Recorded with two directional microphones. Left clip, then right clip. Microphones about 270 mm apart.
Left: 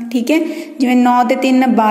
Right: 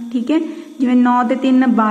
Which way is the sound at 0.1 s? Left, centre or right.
Left.